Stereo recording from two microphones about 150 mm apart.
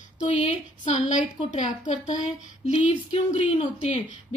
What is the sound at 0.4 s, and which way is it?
A woman's voice, 50° left (ahead or behind).